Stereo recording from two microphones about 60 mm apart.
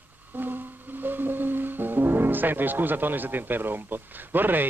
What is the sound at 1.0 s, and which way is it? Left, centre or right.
Speech, right.